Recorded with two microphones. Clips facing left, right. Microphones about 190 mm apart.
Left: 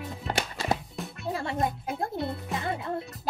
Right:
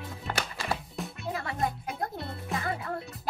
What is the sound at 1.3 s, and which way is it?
Music, 25° left (ahead or behind).